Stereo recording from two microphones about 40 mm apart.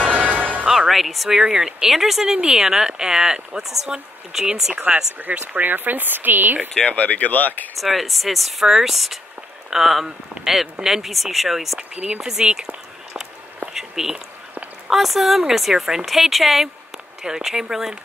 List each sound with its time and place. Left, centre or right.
0.0 s music: right
0.7 s speech: centre
1.3 s speech: centre
4.7 s speech: right
5.6 s speech: right
6.9 s speech: left
7.7 s a woman's voice: centre
8.6 s speech: centre
8.9 s a woman's voice: centre
11.9 s speech: centre
13.7 s a woman's voice: centre